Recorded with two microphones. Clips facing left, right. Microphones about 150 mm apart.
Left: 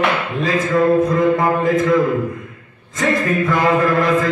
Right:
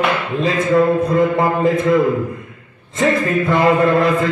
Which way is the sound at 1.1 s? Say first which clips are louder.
Even; 30° right (ahead or behind).